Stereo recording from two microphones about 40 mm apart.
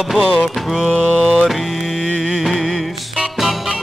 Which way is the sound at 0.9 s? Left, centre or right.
Centre.